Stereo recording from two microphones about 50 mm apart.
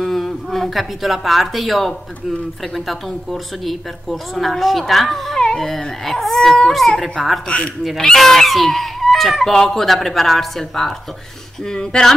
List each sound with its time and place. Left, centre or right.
0.0 s speech: centre
7.4 s speech: left
8.0 s speech: centre